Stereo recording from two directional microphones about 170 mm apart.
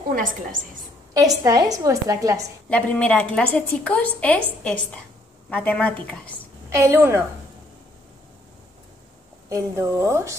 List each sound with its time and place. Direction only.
0.1 s a woman's voice: 55° right (ahead or behind)
1.1 s a woman's voice: 20° right (ahead or behind)
2.7 s a woman's voice: 10° left (ahead or behind)
6.7 s a woman's voice: 15° right (ahead or behind)
9.5 s a woman's voice: 15° right (ahead or behind)